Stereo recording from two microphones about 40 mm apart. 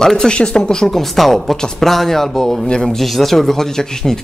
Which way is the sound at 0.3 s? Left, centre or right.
Left.